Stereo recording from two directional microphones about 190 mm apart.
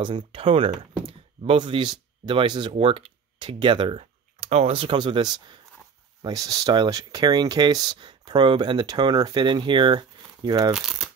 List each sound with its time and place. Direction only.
0.0 s speech: 25° right (ahead or behind)
10.7 s speech: 5° right (ahead or behind)